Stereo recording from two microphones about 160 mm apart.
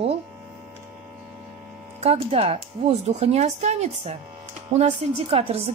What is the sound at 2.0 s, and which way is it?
Speech, 40° right (ahead or behind).